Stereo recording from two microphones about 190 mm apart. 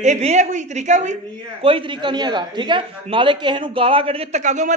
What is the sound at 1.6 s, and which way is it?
A woman's voice, 25° right (ahead or behind).